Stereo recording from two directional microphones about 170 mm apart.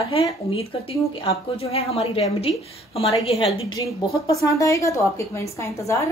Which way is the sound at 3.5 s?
20° left (ahead or behind).